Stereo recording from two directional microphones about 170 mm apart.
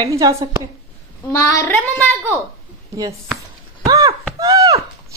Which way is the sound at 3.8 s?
20° right (ahead or behind).